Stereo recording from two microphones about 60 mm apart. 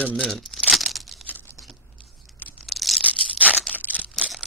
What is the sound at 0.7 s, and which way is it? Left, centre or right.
Tearing, centre.